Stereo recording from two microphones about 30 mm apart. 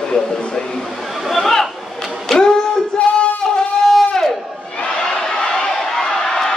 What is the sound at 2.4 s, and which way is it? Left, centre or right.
Music, left.